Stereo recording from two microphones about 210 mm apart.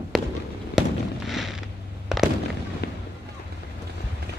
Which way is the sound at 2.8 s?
50° left (ahead or behind).